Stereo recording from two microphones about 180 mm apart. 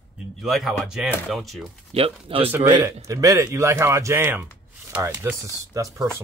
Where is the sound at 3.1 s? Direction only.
20° right (ahead or behind).